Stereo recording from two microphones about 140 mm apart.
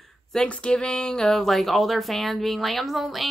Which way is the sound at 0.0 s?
5° left (ahead or behind).